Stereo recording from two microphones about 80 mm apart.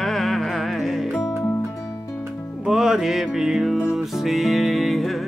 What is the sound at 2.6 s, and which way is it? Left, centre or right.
Music, centre.